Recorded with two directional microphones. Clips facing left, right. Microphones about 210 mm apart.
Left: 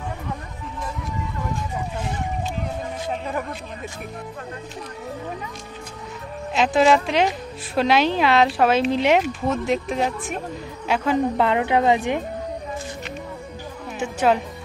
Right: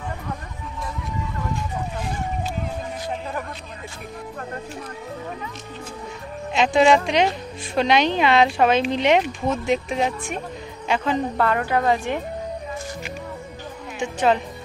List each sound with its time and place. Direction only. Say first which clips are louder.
6.5 s a woman's voice: right 1 dB; centre (ahead or behind)
11.3 s a woman's voice: left 2 dB; 20° left (ahead or behind)
13.9 s music: even; 10° left (ahead or behind)